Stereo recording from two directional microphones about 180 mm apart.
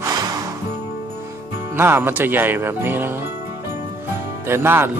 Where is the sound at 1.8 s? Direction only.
10° right (ahead or behind).